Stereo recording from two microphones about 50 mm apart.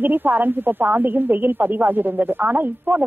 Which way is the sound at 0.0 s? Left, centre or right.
Right.